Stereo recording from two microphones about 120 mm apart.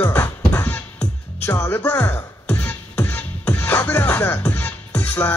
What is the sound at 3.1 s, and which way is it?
Music, 10° left (ahead or behind).